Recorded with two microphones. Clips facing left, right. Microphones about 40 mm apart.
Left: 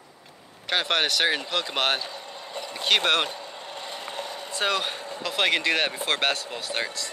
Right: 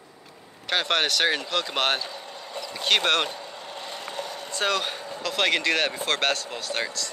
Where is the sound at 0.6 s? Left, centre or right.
Centre.